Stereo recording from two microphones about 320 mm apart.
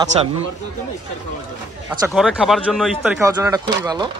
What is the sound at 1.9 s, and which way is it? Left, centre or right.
Speech, centre.